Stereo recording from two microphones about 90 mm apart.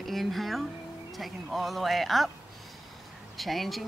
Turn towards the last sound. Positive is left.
turn(degrees=0)  # may be behind; listen again after turning